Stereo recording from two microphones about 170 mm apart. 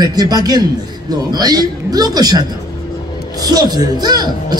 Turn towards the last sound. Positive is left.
turn(degrees=-25)  # may be behind; listen again after turning